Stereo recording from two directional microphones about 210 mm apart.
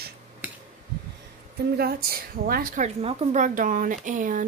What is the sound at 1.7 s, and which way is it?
A woman's voice, 45° right (ahead or behind).